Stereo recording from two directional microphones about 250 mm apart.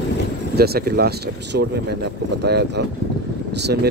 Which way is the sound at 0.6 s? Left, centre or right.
Right.